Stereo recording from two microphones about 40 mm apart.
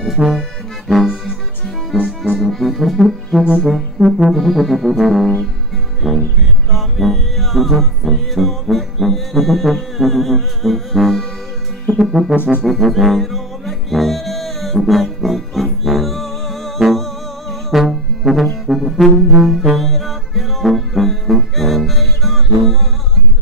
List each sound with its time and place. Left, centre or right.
0.2 s accordion: right
1.9 s music: centre
3.6 s brass instrument: centre
4.3 s music: centre
18.7 s brass instrument: centre